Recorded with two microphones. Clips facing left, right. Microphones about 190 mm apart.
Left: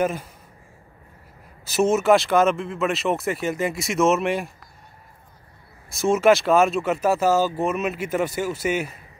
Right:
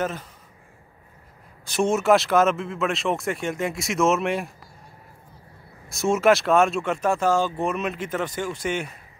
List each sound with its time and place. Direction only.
0.0 s speech: 10° left (ahead or behind)
1.7 s speech: 5° left (ahead or behind)
5.9 s speech: centre (ahead or behind)